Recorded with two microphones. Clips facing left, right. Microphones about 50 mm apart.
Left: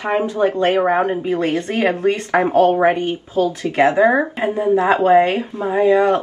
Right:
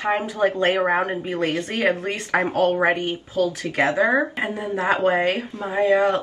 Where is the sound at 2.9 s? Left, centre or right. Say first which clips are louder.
Left 4 dB; left.